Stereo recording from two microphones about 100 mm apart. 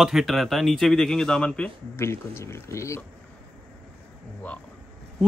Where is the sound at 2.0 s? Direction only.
25° left (ahead or behind).